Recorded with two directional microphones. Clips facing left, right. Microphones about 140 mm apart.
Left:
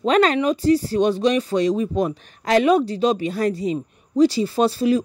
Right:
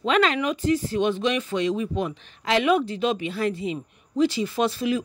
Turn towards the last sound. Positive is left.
turn(degrees=35)  # may be behind; listen again after turning